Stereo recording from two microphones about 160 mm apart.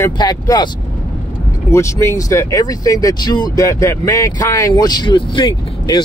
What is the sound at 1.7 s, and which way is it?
Speech, 15° left (ahead or behind).